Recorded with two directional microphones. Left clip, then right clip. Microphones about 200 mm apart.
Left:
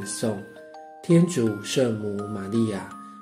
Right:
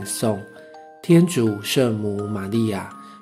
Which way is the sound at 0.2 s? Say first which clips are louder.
Right 6 dB; 35° right (ahead or behind).